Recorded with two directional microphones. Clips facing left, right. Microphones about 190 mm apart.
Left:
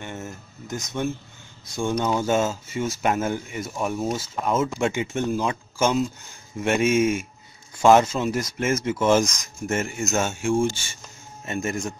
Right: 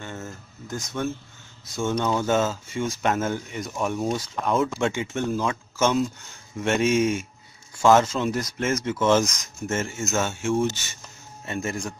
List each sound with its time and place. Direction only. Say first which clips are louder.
0.0 s speech: left 1 dB; 20° left (ahead or behind)
4.9 s speech: left 1 dB; 15° left (ahead or behind)